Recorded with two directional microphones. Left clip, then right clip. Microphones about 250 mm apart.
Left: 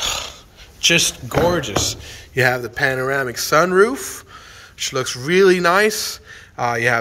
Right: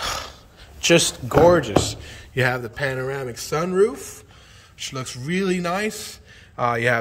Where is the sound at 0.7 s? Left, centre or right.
Centre.